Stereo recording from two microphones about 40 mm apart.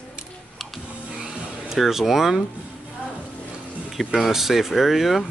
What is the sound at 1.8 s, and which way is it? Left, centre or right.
Speech, centre.